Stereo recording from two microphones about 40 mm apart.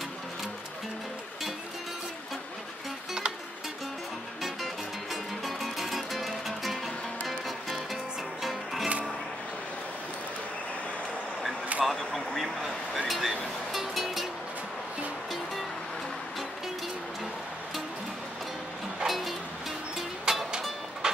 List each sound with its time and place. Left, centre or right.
5.1 s music: centre
11.8 s a sound: centre
13.7 s music: centre
19.0 s music: centre
20.3 s music: centre
21.0 s train: centre